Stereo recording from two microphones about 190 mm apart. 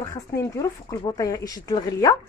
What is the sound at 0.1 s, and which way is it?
Speech, 15° left (ahead or behind).